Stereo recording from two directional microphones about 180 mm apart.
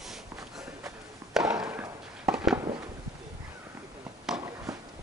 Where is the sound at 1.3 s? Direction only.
5° right (ahead or behind).